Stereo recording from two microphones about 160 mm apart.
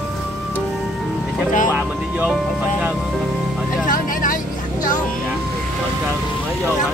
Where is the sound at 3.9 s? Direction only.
55° left (ahead or behind).